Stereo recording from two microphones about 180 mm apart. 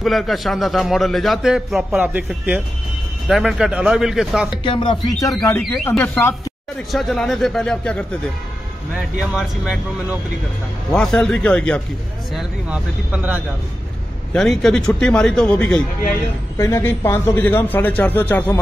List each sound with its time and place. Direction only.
0.0 s a man's voice: centre (ahead or behind)
4.6 s speech: 25° left (ahead or behind)
5.2 s a man's voice: 15° left (ahead or behind)
6.9 s a man's voice: centre (ahead or behind)
9.3 s a man's voice: 5° right (ahead or behind); by 18.6 s 10° left (ahead or behind)